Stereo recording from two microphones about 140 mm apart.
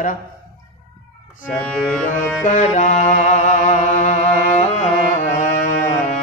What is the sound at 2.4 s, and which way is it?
Music, 65° left (ahead or behind).